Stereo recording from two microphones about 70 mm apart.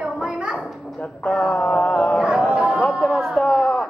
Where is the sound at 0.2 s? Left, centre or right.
Centre.